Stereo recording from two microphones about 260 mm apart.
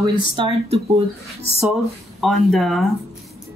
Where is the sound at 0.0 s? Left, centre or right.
Right.